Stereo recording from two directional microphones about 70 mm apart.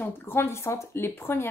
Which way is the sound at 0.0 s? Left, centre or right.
Left.